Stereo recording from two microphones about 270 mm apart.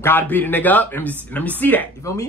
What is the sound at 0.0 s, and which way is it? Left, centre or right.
Speech, centre.